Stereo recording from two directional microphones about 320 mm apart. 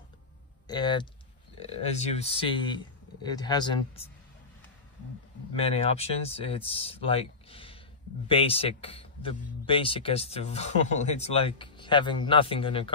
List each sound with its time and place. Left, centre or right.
0.7 s speech: centre
5.6 s speech: centre